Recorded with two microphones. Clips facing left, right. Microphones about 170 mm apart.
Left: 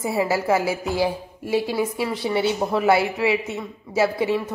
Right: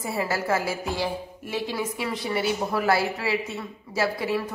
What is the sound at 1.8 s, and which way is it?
A woman's voice, 30° left (ahead or behind).